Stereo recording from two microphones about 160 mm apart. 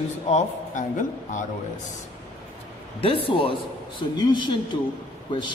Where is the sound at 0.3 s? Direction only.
50° left (ahead or behind).